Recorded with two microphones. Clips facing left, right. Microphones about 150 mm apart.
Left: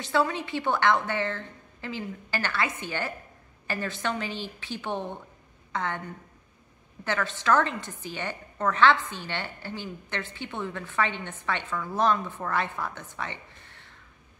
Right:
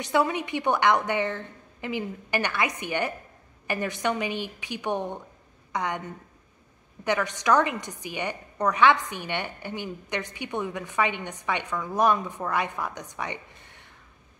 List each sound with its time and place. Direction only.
0.0 s a woman's voice: 20° right (ahead or behind)
7.1 s a woman's voice: 15° right (ahead or behind)